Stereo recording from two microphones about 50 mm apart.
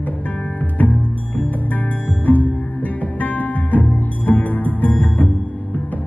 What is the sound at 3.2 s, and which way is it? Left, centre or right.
Music, left.